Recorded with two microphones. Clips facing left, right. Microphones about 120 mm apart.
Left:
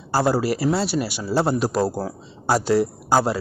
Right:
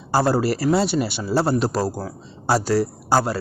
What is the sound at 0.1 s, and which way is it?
A man's voice, 5° left (ahead or behind).